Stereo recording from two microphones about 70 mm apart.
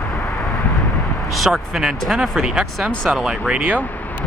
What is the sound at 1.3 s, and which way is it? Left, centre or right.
Speech, centre.